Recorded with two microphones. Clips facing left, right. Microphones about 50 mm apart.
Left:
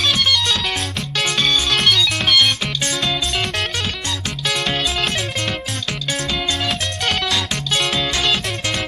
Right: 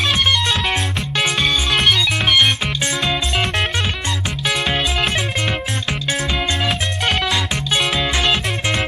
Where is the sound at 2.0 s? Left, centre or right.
Centre.